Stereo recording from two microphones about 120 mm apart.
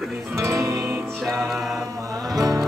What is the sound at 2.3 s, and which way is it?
Music, 30° right (ahead or behind).